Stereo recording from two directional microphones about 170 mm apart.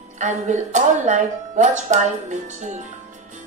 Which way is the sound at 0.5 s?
45° right (ahead or behind).